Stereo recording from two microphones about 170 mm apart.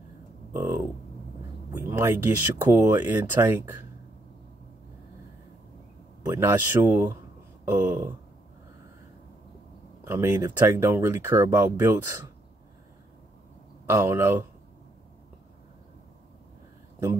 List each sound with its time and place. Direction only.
0.5 s speech: 15° right (ahead or behind)
6.2 s speech: 15° right (ahead or behind)
10.0 s speech: 15° right (ahead or behind)
13.8 s speech: 15° right (ahead or behind)